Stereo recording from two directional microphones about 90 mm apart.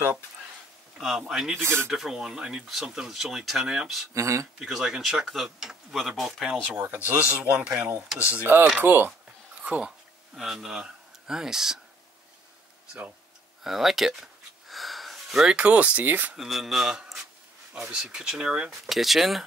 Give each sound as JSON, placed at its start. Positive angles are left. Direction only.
{"t": 0.9, "sound": "speech", "side_deg": -5}
{"t": 1.5, "sound": "speech", "side_deg": -25}
{"t": 1.9, "sound": "speech", "side_deg": -5}
{"t": 4.1, "sound": "speech", "side_deg": -35}
{"t": 4.6, "sound": "speech", "side_deg": -5}
{"t": 6.5, "sound": "speech", "side_deg": -20}
{"t": 10.3, "sound": "speech", "side_deg": -5}
{"t": 13.7, "sound": "speech", "side_deg": -5}
{"t": 16.3, "sound": "speech", "side_deg": 0}